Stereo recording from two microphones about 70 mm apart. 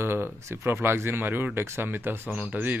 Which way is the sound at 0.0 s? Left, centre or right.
Right.